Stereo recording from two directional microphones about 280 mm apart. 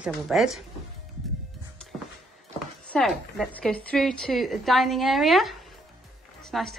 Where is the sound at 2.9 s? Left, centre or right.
Centre.